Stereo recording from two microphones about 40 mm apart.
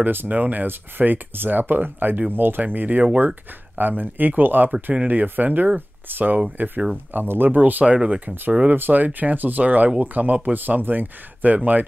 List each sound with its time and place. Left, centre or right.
0.0 s speech: right
0.3 s speech: right
3.7 s speech: right
7.8 s speech: right
8.6 s speech: right